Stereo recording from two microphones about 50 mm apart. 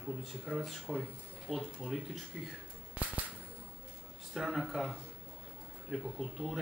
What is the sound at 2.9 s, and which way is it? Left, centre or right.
Cap gun, right.